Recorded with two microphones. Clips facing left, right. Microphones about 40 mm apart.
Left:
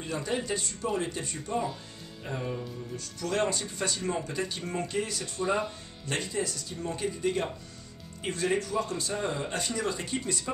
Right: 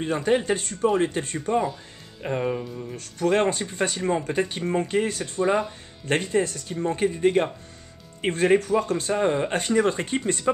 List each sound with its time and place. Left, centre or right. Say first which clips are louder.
0.0 s speech: right 9 dB; right